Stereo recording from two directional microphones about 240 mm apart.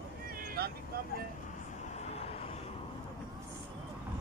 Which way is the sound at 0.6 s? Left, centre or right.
Right.